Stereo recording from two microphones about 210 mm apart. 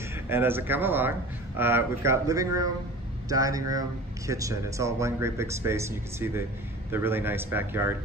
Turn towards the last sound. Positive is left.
turn(degrees=-10)  # may be behind; listen again after turning